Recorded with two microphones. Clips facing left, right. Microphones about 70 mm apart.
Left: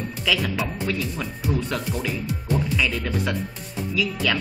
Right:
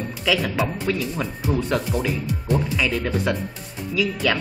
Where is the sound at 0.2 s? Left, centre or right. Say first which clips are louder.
Right 3 dB; centre.